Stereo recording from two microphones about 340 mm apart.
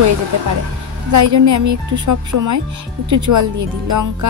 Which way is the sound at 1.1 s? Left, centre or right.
Right.